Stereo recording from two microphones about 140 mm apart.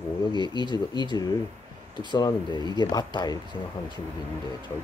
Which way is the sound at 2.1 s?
30° left (ahead or behind).